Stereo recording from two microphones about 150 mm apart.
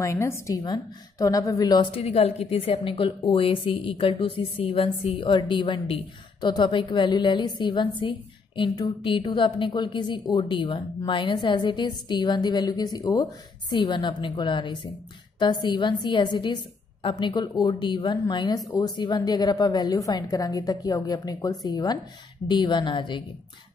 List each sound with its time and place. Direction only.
0.0 s a woman's voice: 20° left (ahead or behind)
2.0 s a woman's voice: 40° left (ahead or behind)